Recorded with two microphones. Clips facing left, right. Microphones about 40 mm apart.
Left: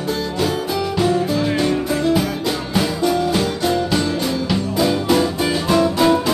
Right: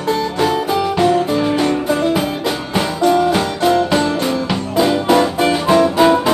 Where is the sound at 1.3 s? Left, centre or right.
Right.